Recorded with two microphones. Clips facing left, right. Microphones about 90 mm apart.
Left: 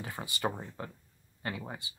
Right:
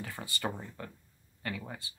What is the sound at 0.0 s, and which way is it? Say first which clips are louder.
Speech: left 2 dB; 20° left (ahead or behind).